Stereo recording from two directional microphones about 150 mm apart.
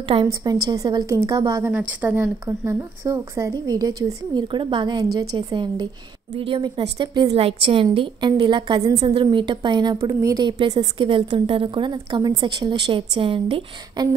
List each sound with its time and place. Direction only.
0.1 s a woman's voice: 45° right (ahead or behind)
0.7 s a woman's voice: 30° right (ahead or behind)
7.3 s a woman's voice: 40° right (ahead or behind)